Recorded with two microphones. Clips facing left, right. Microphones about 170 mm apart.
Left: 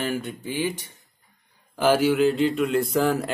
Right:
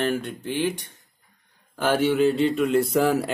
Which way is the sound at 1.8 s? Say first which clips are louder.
Left 1 dB; centre (ahead or behind).